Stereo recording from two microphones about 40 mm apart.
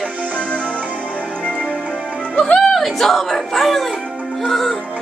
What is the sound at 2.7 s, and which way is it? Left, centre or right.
Speech, centre.